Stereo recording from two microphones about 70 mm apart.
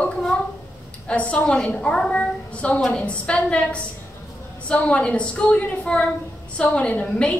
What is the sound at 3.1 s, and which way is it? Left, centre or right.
A woman's voice, centre.